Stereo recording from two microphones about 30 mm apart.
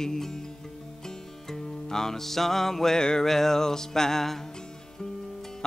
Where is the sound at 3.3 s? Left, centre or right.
Centre.